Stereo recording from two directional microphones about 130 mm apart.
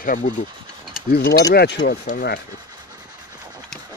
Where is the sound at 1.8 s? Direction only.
90° left.